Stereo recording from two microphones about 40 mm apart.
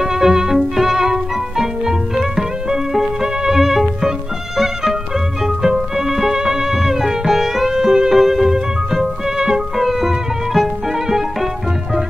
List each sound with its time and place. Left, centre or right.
0.0 s music: centre
5.6 s music: centre